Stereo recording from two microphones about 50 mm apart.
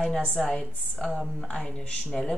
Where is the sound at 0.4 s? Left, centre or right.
Centre.